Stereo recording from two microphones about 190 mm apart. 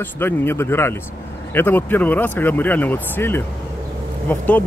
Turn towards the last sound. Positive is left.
turn(degrees=10)  # may be behind; listen again after turning